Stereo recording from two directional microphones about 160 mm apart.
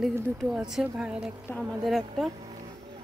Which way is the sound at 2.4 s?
25° right (ahead or behind).